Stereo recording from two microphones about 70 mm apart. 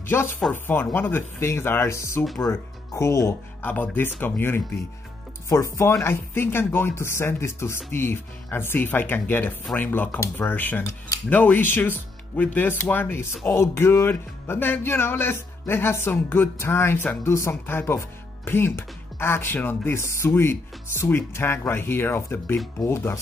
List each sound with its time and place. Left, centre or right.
0.0 s chopping: left
0.5 s speech: left
3.6 s speech: left
5.5 s speech: left
6.0 s speech: left